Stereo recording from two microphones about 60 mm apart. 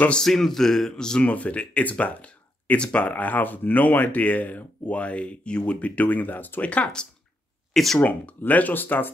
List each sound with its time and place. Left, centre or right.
0.1 s a man's voice: centre
1.2 s speech: left
7.7 s speech: centre
8.0 s speech: left